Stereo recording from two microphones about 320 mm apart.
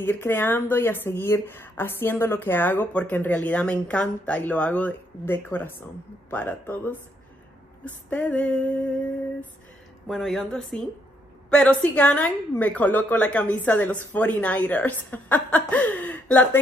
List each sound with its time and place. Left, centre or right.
0.0 s a woman's voice: centre
10.0 s a woman's voice: centre